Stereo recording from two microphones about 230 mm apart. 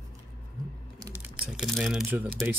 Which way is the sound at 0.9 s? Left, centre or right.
Centre.